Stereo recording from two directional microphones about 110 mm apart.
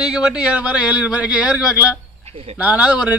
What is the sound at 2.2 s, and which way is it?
Speech, 70° right (ahead or behind).